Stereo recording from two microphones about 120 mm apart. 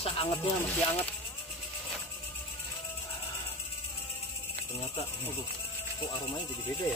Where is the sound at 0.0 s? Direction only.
50° left (ahead or behind).